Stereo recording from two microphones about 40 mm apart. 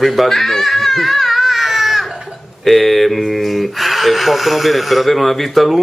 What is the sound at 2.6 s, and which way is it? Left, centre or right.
Speech, centre.